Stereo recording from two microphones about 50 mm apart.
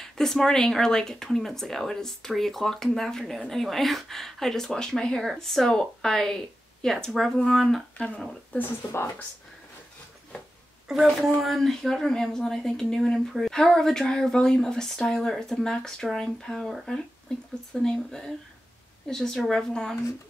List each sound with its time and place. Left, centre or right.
0.0 s speech: centre
8.5 s speech: left
10.9 s speech: centre
11.4 s speech: centre
17.3 s speech: centre